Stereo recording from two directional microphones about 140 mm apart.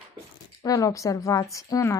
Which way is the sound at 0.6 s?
25° left (ahead or behind).